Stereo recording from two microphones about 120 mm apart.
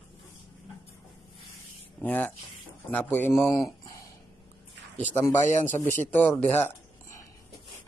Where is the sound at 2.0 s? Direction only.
10° left (ahead or behind).